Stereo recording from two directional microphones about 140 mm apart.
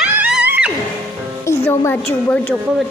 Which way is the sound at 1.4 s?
20° left (ahead or behind).